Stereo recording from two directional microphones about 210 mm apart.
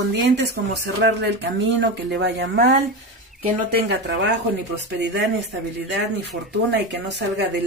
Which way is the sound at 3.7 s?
55° right (ahead or behind).